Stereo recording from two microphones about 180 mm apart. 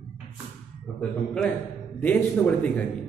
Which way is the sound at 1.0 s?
5° left (ahead or behind).